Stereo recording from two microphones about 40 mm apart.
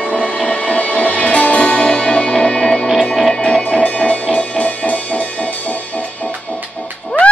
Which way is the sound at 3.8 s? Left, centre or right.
Left.